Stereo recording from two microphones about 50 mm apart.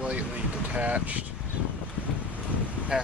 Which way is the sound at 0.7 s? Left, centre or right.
Right.